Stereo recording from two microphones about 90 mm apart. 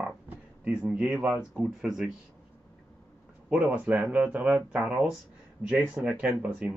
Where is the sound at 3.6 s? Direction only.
15° right (ahead or behind).